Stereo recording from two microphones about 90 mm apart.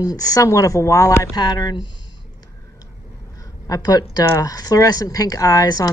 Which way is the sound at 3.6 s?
45° left (ahead or behind).